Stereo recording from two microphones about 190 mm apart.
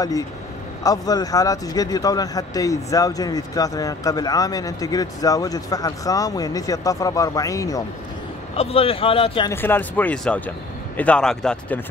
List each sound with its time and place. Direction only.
0.8 s speech: 20° left (ahead or behind)
8.5 s speech: 30° left (ahead or behind)
9.5 s speech: 10° left (ahead or behind)